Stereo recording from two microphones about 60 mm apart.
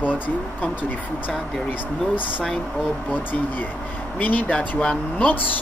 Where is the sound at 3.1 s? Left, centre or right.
Left.